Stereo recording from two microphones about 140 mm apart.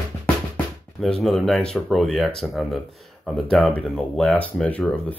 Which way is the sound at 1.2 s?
Centre (ahead or behind).